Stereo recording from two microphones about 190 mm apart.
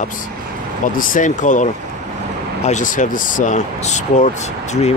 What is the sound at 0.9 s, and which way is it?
Speech, 45° left (ahead or behind).